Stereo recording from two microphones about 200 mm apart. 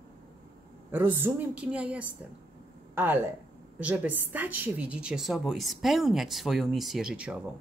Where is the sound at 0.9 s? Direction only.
10° right (ahead or behind).